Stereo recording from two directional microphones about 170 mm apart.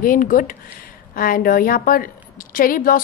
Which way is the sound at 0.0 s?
55° left (ahead or behind).